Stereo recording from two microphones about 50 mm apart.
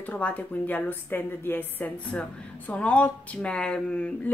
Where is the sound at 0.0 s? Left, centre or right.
Left.